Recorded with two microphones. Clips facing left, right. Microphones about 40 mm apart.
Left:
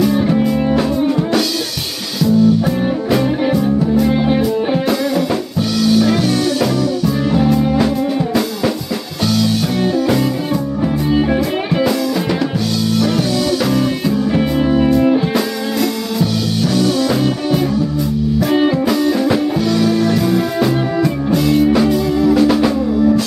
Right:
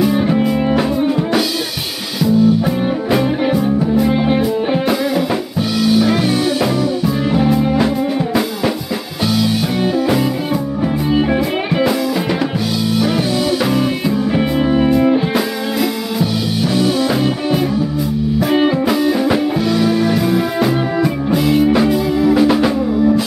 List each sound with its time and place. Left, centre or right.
0.0 s music: centre
11.1 s music: centre
13.6 s music: centre